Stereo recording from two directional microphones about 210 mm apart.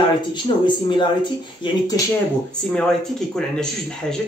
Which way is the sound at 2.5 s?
5° left (ahead or behind).